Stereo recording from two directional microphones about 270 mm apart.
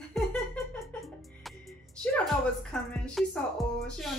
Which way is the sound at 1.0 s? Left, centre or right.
Centre.